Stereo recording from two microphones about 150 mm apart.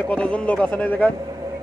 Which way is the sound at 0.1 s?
5° left (ahead or behind).